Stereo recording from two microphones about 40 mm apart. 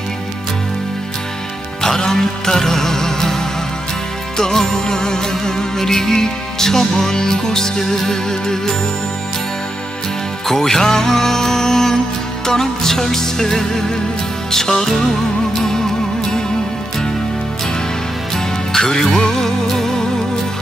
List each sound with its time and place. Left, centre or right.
1.8 s music: centre
10.5 s music: centre
18.3 s music: centre